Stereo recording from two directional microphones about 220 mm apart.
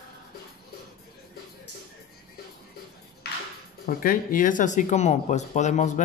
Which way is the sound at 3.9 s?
40° left (ahead or behind).